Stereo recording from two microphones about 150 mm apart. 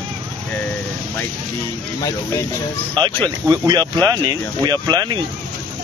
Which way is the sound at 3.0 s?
30° right (ahead or behind).